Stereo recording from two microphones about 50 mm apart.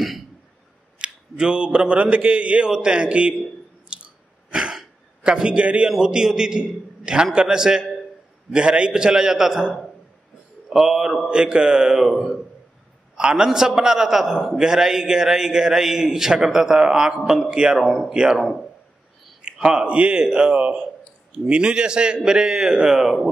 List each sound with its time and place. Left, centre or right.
0.9 s a man's voice: right
3.9 s a sound: centre
5.9 s a man's voice: centre
12.1 s a man's voice: centre
13.1 s a man's voice: centre
17.2 s a man's voice: centre
17.5 s a man's voice: centre